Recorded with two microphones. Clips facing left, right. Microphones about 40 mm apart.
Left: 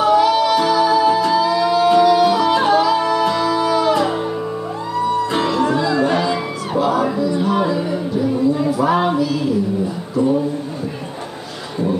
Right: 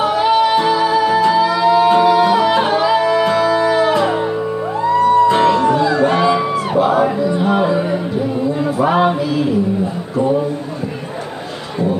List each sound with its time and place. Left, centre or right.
0.0 s music: right
3.0 s music: right
5.3 s music: centre
5.8 s music: right